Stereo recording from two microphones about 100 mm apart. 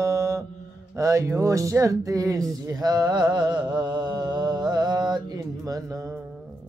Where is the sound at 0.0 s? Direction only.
30° right (ahead or behind).